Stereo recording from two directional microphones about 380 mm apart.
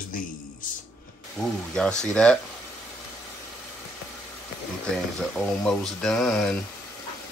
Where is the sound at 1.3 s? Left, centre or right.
Centre.